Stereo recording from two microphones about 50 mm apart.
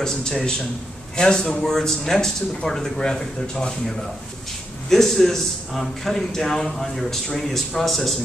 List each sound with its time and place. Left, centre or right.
0.0 s a man's voice: centre